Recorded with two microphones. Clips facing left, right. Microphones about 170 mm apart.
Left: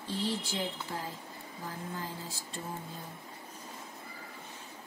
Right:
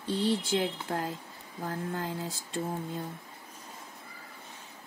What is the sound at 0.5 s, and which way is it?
A woman's voice, 80° right.